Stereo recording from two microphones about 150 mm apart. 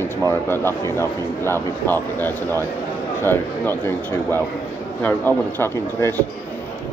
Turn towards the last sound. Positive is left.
turn(degrees=15)  # may be behind; listen again after turning